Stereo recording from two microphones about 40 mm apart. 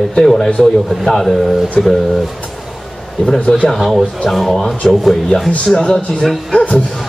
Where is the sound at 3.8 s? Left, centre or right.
Centre.